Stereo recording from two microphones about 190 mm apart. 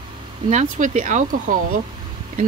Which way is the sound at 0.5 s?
40° right (ahead or behind).